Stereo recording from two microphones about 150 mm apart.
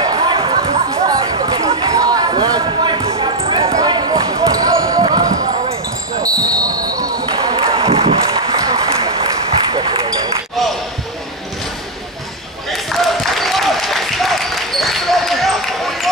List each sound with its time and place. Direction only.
0.0 s chatter: 30° right (ahead or behind)
1.0 s basketball bounce: 25° right (ahead or behind)
5.3 s basketball bounce: 50° right (ahead or behind)
6.1 s basketball bounce: 25° right (ahead or behind)
7.0 s a sound: 25° right (ahead or behind)
8.5 s applause: 25° right (ahead or behind)
9.7 s basketball bounce: 35° right (ahead or behind)
12.7 s applause: centre (ahead or behind)